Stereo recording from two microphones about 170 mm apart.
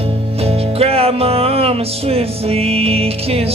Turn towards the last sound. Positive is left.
turn(degrees=-35)  # may be behind; listen again after turning